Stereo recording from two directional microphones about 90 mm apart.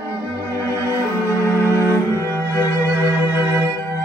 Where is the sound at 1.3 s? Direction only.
30° left (ahead or behind).